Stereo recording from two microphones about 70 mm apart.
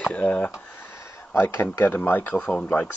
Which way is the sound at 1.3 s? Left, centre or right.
Left.